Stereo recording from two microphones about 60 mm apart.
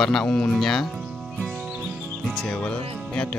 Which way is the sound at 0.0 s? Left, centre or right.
Centre.